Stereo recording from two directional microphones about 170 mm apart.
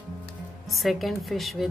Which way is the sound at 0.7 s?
Centre (ahead or behind).